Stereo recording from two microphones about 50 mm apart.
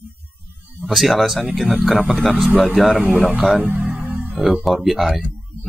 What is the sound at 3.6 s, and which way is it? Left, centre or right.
Music, right.